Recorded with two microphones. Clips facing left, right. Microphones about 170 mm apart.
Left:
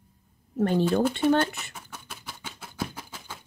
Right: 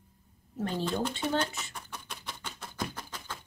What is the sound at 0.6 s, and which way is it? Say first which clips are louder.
Speech: left 9 dB; 60° left (ahead or behind).